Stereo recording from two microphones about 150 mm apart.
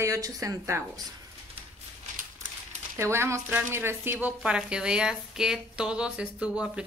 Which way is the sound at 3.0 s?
15° right (ahead or behind).